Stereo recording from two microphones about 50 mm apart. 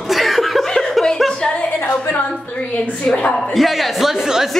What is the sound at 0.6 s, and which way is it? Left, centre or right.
Chuckle, centre.